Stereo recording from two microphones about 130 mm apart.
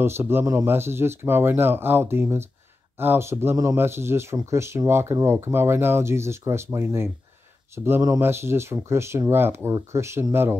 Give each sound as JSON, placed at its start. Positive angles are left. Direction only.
{"t": 0.0, "sound": "speech", "side_deg": -20}